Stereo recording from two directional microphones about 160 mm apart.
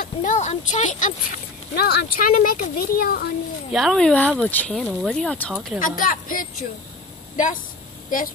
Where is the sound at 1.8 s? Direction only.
85° left; by 3.3 s 70° left (ahead or behind).